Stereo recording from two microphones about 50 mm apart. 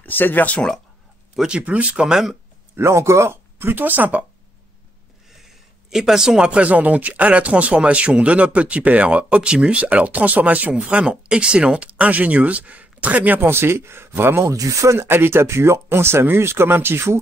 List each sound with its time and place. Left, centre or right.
0.0 s speech: left
1.3 s speech: centre
1.6 s speech: right
2.7 s speech: right
5.4 s a sound: centre
6.6 s speech: right
11.1 s speech: centre
13.4 s speech: right
15.0 s speech: right